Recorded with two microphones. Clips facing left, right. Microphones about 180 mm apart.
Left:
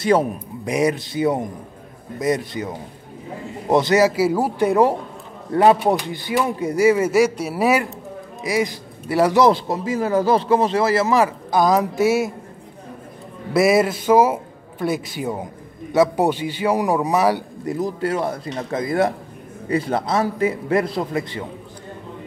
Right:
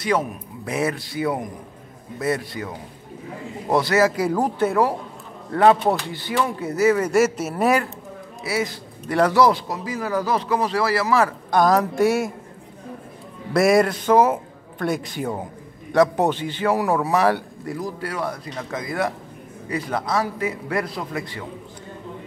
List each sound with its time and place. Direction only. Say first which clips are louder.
0.0 s a man's voice: left 5 dB; 30° left (ahead or behind)
0.7 s speech: left 5 dB; 15° left (ahead or behind)
4.1 s a man's voice: left 3 dB; 5° left (ahead or behind)
9.3 s speech: left 2 dB; 25° left (ahead or behind)
11.5 s a woman's voice: even; centre (ahead or behind)
13.5 s a man's voice: left 1 dB; centre (ahead or behind); by 21.5 s 25° left (ahead or behind)